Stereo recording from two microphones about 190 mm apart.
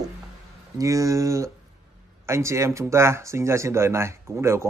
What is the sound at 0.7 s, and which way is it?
Speech, 15° right (ahead or behind).